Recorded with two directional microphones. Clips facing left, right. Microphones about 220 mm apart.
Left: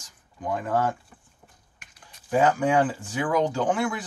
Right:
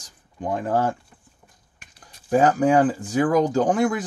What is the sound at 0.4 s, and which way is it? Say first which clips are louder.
Speech: right 3 dB; 30° right (ahead or behind).